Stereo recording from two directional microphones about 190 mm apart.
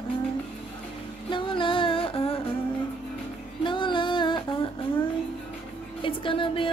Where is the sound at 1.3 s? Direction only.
25° left (ahead or behind).